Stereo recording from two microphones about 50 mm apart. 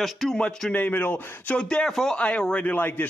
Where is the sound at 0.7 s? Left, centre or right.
Left.